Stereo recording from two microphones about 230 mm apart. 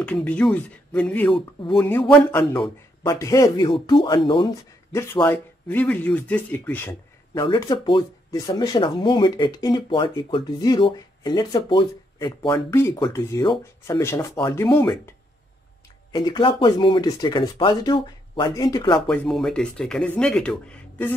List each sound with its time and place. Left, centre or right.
0.0 s speech: centre
1.3 s speech: left
1.9 s speech: centre
4.9 s speech: centre
7.4 s speech: centre
19.0 s speech: centre